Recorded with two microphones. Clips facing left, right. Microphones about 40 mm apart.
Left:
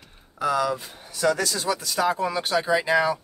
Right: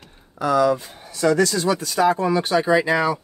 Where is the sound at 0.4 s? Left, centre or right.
Centre.